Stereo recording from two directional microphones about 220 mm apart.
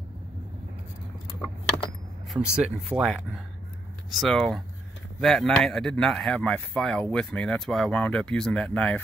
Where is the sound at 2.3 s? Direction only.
5° right (ahead or behind).